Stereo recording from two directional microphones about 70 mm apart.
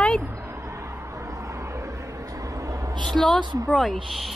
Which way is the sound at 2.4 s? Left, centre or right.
Right.